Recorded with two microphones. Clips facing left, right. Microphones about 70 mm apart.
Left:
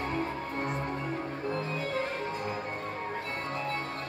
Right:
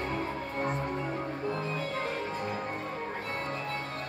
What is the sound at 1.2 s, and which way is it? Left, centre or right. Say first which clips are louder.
Cello: even; centre.